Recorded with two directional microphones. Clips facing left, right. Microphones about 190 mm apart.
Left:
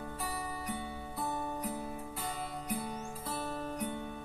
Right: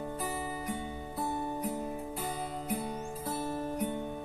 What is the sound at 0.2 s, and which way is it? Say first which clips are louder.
Music: right 3 dB; 20° right (ahead or behind).